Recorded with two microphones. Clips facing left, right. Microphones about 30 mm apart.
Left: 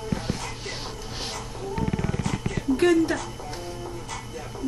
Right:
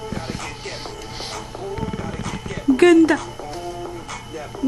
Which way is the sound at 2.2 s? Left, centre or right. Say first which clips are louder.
Right 5 dB; right.